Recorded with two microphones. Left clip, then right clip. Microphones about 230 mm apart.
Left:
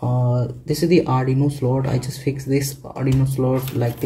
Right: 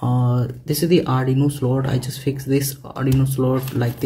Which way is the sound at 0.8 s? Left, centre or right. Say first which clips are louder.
Left 1 dB; centre.